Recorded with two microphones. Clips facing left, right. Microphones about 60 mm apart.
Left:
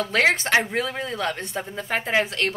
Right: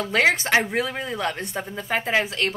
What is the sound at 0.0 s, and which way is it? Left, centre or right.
A woman's voice, centre.